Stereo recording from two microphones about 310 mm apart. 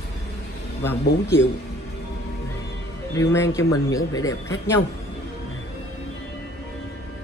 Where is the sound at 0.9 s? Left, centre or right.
Centre.